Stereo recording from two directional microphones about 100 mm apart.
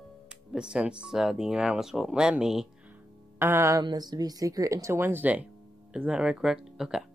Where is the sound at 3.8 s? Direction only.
40° right (ahead or behind); by 7.0 s 5° right (ahead or behind).